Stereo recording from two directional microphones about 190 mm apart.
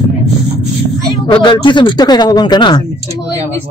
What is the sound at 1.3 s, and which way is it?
Speech, 25° left (ahead or behind).